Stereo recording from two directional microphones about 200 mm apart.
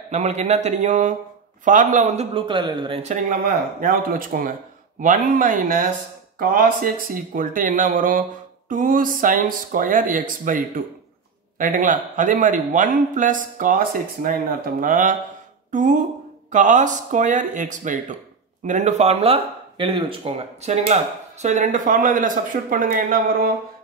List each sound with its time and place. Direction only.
0.1 s speech: 35° right (ahead or behind)
2.3 s speech: 25° right (ahead or behind); by 23.5 s 45° right (ahead or behind)